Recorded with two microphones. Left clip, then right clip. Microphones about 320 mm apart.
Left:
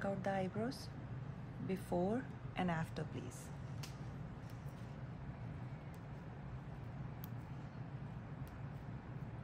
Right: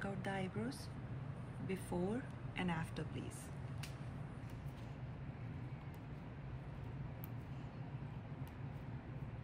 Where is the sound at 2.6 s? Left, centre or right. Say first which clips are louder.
Left 2 dB; left.